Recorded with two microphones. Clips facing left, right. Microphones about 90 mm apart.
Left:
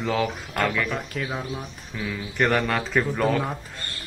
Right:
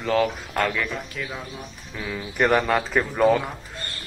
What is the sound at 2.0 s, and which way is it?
A man's voice, 5° right (ahead or behind).